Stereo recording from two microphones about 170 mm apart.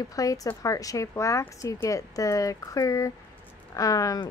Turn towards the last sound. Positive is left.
turn(degrees=20)  # may be behind; listen again after turning